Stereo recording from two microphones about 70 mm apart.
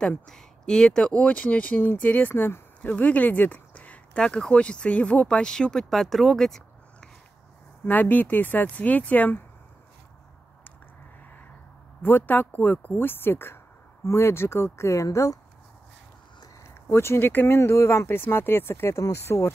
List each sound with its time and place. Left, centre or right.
0.3 s speech: centre
1.2 s speech: left
7.8 s speech: left
12.0 s speech: left
16.6 s speech: left
17.6 s speech: left